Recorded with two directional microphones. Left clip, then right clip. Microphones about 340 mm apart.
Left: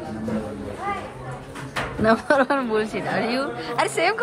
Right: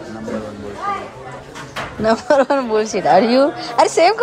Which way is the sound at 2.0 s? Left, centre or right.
Centre.